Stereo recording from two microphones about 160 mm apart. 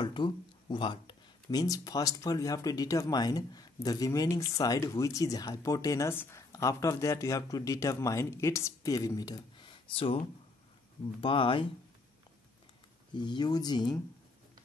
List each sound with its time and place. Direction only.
0.0 s speech: 30° left (ahead or behind)
13.1 s speech: 30° left (ahead or behind)